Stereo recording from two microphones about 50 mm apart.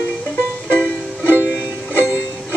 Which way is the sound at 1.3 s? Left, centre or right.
Right.